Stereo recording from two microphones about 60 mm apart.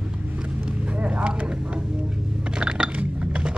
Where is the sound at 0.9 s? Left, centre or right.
Centre.